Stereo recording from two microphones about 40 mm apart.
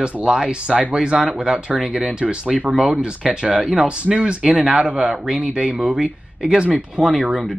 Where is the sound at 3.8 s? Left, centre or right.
Right.